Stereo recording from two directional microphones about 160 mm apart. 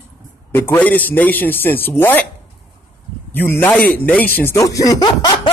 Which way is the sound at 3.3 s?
15° left (ahead or behind).